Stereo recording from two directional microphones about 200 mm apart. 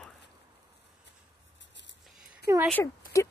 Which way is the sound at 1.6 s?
65° left (ahead or behind).